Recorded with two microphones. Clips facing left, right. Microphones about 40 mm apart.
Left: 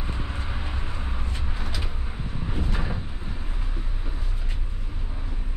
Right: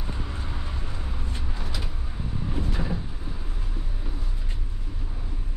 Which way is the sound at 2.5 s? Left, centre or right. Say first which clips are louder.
Even; centre.